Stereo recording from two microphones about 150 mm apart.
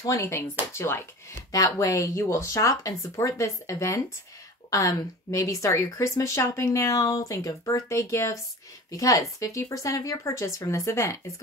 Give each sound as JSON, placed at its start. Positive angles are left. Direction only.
{"t": 0.0, "sound": "a woman's voice", "side_deg": 20}